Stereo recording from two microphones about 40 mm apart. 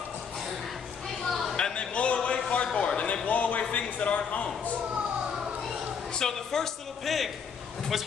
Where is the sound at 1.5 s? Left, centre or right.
Left.